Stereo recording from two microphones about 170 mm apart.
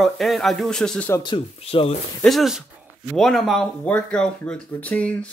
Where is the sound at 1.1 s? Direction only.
25° left (ahead or behind).